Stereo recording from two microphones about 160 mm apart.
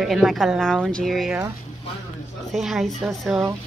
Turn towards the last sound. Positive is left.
turn(degrees=-5)  # may be behind; listen again after turning